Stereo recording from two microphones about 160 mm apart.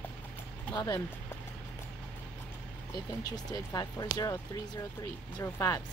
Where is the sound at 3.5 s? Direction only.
25° left (ahead or behind).